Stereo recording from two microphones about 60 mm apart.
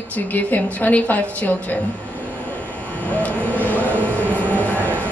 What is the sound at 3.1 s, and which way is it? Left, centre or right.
Vehicle, left.